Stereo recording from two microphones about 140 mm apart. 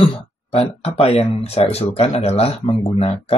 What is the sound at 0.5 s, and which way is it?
Speech, 45° left (ahead or behind).